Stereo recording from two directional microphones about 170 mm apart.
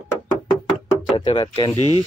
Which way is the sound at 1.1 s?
30° left (ahead or behind).